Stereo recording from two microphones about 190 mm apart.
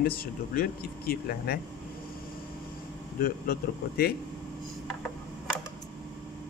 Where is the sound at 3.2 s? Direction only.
50° left (ahead or behind).